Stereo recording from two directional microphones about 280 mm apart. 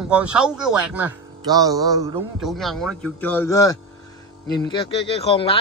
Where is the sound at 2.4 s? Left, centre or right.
Centre.